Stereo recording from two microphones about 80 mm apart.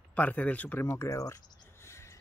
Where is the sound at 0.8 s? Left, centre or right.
Left.